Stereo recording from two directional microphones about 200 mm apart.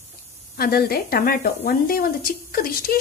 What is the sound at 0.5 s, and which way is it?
A woman's voice, 50° left (ahead or behind).